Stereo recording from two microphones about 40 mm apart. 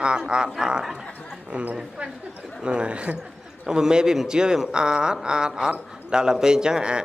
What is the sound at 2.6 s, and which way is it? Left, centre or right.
Speech, right.